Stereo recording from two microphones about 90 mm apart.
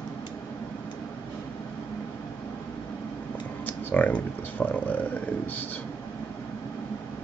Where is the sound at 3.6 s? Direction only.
15° left (ahead or behind).